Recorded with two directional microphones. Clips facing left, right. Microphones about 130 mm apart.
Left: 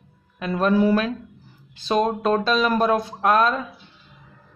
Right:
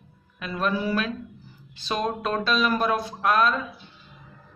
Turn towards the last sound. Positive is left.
turn(degrees=40)  # may be behind; listen again after turning